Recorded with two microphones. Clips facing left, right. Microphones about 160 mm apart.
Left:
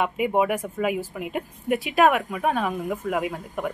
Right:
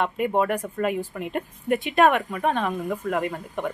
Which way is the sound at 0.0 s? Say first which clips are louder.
Left 1 dB; 10° left (ahead or behind).